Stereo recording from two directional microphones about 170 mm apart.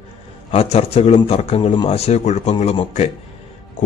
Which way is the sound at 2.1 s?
40° left (ahead or behind).